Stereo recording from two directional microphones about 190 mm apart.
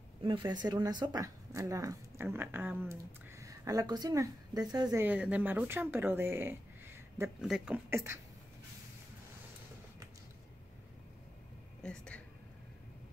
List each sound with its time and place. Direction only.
0.2 s a woman's voice: 25° right (ahead or behind)
5.0 s speech: 5° right (ahead or behind)
11.8 s a sound: 5° left (ahead or behind)